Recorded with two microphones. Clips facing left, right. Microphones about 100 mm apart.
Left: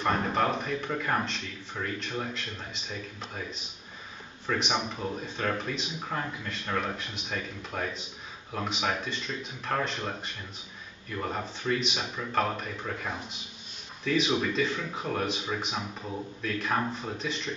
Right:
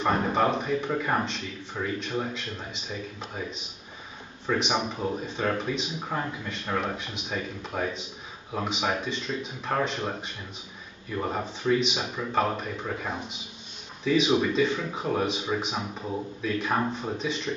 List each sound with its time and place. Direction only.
0.0 s a man's voice: 5° right (ahead or behind)